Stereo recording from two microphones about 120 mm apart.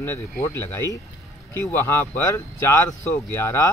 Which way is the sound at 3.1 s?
20° left (ahead or behind).